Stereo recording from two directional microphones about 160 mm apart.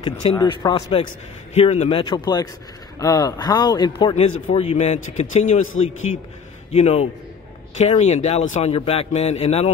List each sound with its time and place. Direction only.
0.4 s speech: 25° left (ahead or behind)
1.5 s a man's voice: 45° left (ahead or behind); by 4.1 s 25° left (ahead or behind)
4.1 s a man's voice: 40° left (ahead or behind)